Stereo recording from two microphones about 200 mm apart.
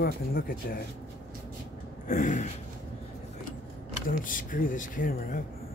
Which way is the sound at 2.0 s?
40° left (ahead or behind).